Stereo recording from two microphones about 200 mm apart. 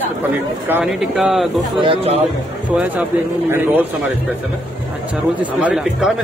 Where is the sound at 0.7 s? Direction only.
5° right (ahead or behind).